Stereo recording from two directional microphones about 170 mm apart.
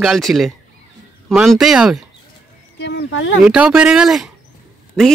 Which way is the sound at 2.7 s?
90° left.